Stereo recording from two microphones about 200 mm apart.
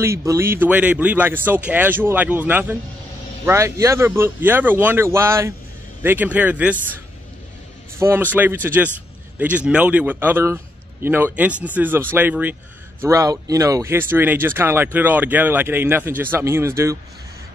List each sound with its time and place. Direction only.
0.0 s speech: 15° right (ahead or behind)
8.0 s speech: 10° right (ahead or behind)